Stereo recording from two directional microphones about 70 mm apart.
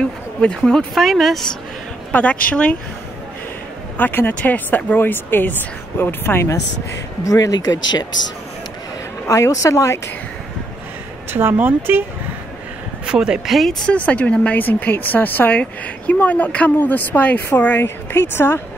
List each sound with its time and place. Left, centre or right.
0.0 s a sound: centre
0.9 s speech: centre
2.1 s a woman's voice: centre
3.9 s a woman's voice: left
7.2 s a woman's voice: left
7.5 s speech: left
9.3 s a woman's voice: left
11.3 s speech: right
13.0 s speech: centre
13.8 s a woman's voice: centre